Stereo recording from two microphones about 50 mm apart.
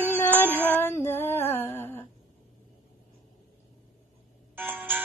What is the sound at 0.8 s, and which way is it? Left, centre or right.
Music, left.